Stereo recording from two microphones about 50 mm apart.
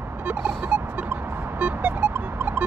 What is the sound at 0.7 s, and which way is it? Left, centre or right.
Music, right.